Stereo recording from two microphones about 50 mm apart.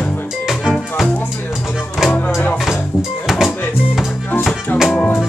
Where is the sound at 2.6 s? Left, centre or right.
Centre.